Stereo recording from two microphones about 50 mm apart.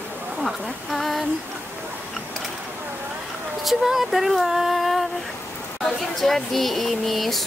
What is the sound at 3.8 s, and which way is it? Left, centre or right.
Speech, centre.